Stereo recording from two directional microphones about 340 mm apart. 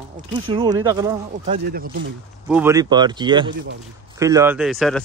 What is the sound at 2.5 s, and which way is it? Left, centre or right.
Speech, centre.